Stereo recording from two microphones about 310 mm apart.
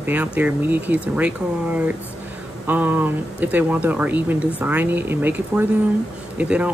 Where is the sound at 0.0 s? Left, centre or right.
Centre.